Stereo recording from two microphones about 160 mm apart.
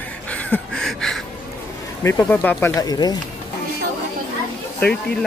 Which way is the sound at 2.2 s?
10° left (ahead or behind).